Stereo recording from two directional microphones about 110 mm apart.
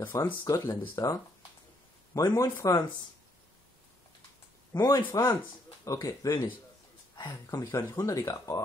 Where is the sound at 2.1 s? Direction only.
35° left (ahead or behind).